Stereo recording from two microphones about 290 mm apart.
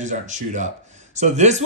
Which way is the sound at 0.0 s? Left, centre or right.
Right.